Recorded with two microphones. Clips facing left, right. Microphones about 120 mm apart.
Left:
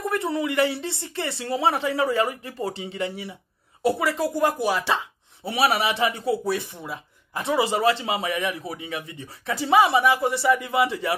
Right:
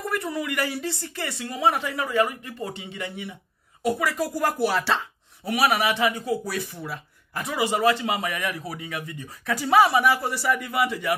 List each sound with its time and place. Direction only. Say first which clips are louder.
0.0 s a man's voice: left 3 dB; 25° left (ahead or behind)
5.4 s a man's voice: even; 30° left (ahead or behind)